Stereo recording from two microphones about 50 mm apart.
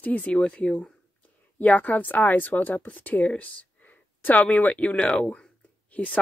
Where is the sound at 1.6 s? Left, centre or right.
Left.